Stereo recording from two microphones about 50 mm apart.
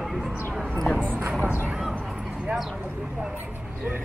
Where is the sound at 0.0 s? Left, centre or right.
Centre.